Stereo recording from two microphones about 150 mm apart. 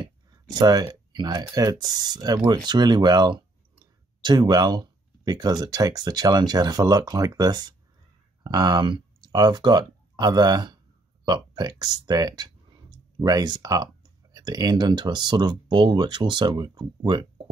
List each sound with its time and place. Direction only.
0.6 s speech: 25° right (ahead or behind)